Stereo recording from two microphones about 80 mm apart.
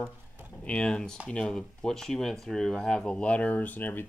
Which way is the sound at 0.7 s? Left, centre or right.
Centre.